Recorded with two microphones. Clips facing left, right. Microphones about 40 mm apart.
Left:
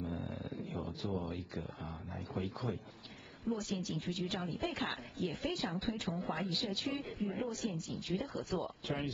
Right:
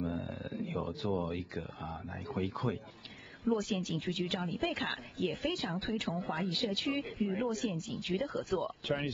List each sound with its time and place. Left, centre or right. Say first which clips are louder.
0.3 s wild animals: right 4 dB; right
2.1 s speech: right 4 dB; right